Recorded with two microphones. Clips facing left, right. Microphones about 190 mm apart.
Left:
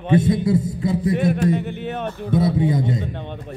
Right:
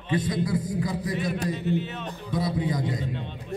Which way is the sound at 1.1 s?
55° left (ahead or behind).